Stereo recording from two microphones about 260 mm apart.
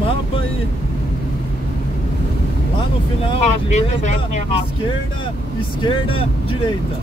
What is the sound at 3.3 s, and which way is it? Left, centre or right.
Speech, left.